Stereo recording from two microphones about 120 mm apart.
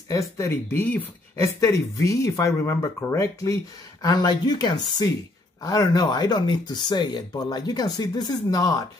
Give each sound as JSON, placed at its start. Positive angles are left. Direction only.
{"t": 0.1, "sound": "speech", "side_deg": 20}